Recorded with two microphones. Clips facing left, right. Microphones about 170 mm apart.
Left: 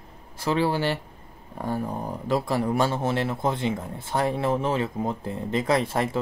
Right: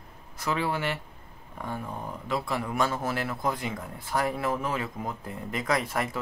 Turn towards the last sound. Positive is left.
turn(degrees=30)  # may be behind; listen again after turning